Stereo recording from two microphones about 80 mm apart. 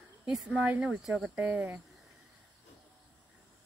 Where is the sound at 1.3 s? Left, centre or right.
Right.